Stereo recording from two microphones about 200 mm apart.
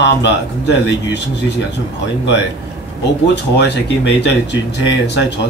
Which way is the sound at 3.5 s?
60° left (ahead or behind).